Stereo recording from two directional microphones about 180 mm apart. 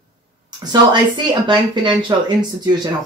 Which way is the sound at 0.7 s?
25° right (ahead or behind).